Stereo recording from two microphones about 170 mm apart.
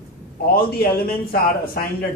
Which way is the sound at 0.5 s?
60° left (ahead or behind).